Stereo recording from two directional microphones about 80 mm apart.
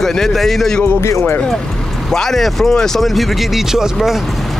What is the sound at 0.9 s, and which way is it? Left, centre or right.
Speech, left.